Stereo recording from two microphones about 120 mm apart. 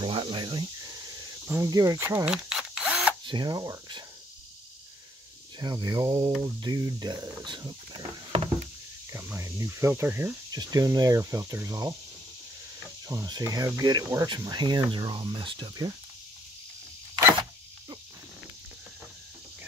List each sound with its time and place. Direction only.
0.0 s cricket: 45° right (ahead or behind)
0.9 s a sound: 20° right (ahead or behind)
1.7 s speech: 30° right (ahead or behind)
2.2 s camera: 5° right (ahead or behind)
3.3 s speech: 35° right (ahead or behind)
5.6 s speech: 35° right (ahead or behind)
9.1 s speech: 20° right (ahead or behind)
10.5 s speech: 35° right (ahead or behind)
13.1 s speech: 30° right (ahead or behind)